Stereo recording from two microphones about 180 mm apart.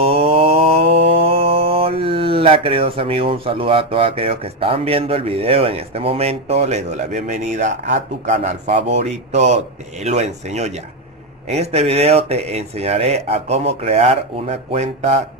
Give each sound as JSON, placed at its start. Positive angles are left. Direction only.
{"t": 0.0, "sound": "mantra", "side_deg": -35}
{"t": 10.0, "sound": "speech", "side_deg": -40}